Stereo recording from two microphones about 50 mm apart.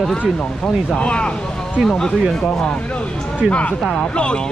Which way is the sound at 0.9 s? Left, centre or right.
Left.